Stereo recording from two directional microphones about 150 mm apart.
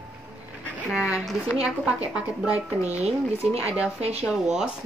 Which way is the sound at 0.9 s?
5° right (ahead or behind).